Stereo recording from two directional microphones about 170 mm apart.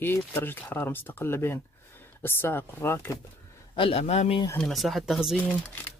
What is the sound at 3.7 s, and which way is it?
Speech, 35° left (ahead or behind).